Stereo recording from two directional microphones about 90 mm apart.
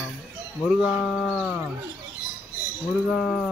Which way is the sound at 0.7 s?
10° right (ahead or behind).